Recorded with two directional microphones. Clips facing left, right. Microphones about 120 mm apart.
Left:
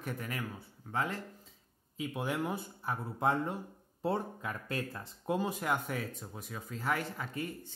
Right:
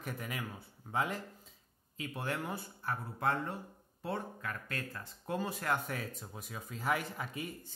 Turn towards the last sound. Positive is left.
turn(degrees=-5)  # may be behind; listen again after turning